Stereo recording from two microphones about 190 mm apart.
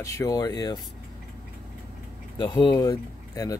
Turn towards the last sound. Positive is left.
turn(degrees=20)  # may be behind; listen again after turning